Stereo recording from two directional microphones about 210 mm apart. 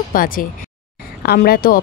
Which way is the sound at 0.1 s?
40° left (ahead or behind).